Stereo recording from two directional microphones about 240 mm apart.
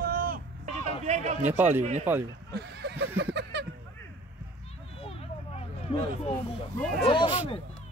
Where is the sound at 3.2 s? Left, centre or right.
Right.